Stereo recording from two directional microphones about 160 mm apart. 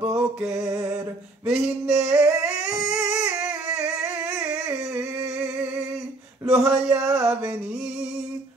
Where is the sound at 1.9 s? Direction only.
15° right (ahead or behind).